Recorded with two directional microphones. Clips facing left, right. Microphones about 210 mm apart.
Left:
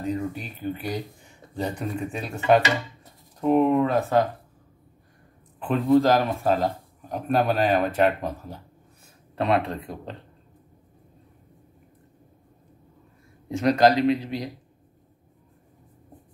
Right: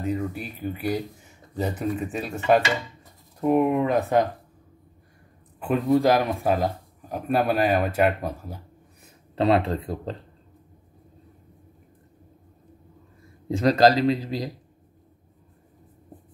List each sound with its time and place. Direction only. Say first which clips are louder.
0.0 s speech: right 1 dB; 5° right (ahead or behind)
5.9 s speech: left 1 dB; 15° right (ahead or behind)
9.3 s speech: right 3 dB; 30° right (ahead or behind)
13.6 s a man's voice: right 1 dB; 35° right (ahead or behind)